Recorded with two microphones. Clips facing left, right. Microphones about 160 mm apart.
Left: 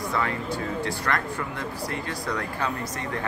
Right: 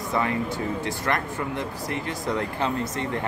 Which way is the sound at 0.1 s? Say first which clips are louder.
Right 4 dB; 20° right (ahead or behind).